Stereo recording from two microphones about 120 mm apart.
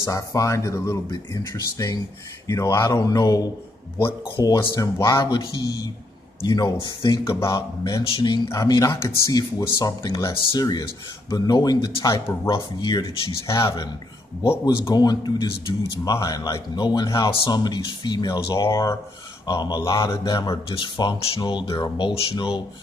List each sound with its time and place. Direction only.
0.0 s speech: 30° left (ahead or behind)
4.6 s speech: 30° left (ahead or behind)
7.2 s speech: 25° left (ahead or behind)
13.5 s speech: 25° left (ahead or behind)
14.9 s speech: 35° left (ahead or behind)
20.6 s speech: 40° left (ahead or behind)